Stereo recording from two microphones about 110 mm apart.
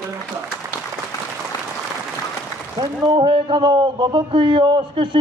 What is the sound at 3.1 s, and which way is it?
A man's voice, 50° right (ahead or behind).